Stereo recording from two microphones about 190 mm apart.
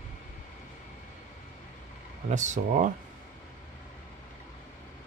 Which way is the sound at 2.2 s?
40° right (ahead or behind).